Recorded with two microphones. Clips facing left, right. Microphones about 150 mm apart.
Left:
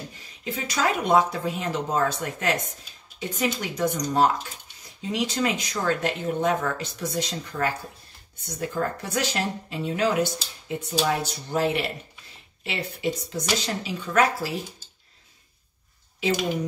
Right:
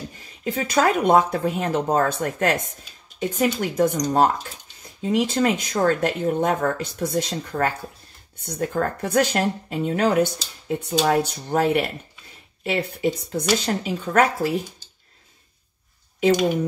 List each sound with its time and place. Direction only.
0.4 s speech: 55° right (ahead or behind)